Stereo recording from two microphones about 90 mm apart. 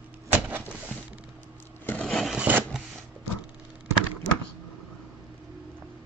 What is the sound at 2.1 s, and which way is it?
Filing, centre (ahead or behind).